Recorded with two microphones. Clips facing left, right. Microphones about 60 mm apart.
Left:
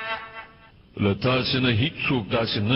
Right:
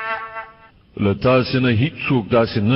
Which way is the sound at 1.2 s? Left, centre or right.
Right.